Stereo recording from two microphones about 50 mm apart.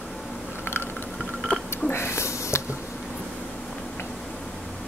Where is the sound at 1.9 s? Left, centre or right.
Left.